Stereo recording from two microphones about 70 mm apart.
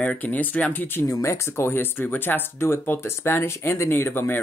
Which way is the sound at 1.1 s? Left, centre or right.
Left.